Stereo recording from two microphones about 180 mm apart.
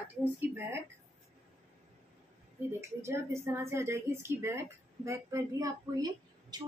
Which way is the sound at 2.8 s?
15° right (ahead or behind).